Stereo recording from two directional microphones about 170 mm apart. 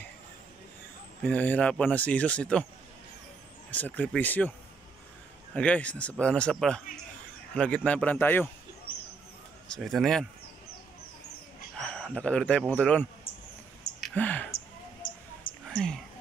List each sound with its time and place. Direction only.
1.2 s speech: 10° left (ahead or behind)
3.7 s speech: 10° left (ahead or behind)
9.8 s speech: centre (ahead or behind)
11.8 s a man's voice: 5° left (ahead or behind)
15.0 s a sound: 50° left (ahead or behind)